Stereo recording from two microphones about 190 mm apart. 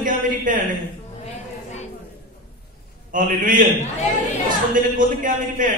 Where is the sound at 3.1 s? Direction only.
45° right (ahead or behind).